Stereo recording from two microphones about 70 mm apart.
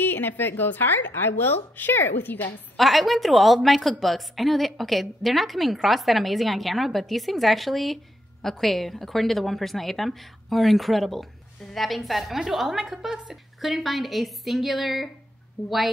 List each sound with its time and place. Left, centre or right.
0.0 s speech: left
2.8 s a woman's voice: centre
15.6 s speech: centre